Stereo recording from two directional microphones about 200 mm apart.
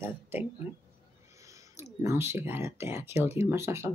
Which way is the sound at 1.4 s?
15° right (ahead or behind).